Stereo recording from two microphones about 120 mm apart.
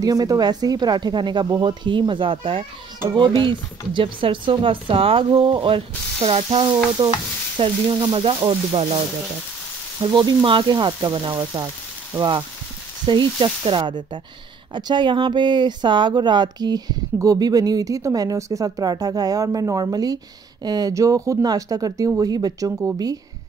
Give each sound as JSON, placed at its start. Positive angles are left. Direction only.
{"t": 0.0, "sound": "speech", "side_deg": -30}
{"t": 7.5, "sound": "speech", "side_deg": -45}
{"t": 10.0, "sound": "speech", "side_deg": -40}
{"t": 22.7, "sound": "speech", "side_deg": -20}